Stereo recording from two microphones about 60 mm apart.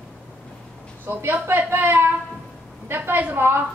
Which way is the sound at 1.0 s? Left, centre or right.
Right.